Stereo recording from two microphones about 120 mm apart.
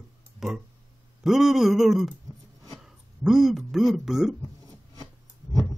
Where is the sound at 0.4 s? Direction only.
5° right (ahead or behind).